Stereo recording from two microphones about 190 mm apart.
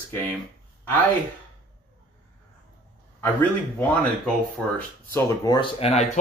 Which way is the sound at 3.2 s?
10° left (ahead or behind).